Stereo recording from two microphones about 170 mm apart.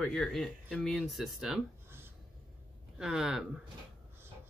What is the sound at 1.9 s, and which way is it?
Writing, 15° right (ahead or behind).